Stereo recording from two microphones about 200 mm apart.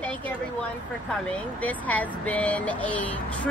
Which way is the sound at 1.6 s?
5° left (ahead or behind).